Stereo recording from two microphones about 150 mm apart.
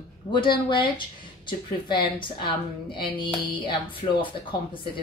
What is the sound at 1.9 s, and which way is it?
Speech, 30° left (ahead or behind).